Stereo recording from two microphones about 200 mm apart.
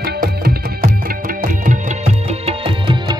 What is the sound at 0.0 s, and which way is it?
Music, 50° right (ahead or behind).